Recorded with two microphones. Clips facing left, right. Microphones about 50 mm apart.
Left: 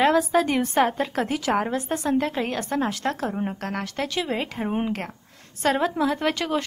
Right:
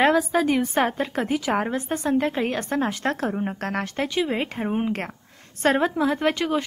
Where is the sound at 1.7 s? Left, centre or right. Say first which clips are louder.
Even; right.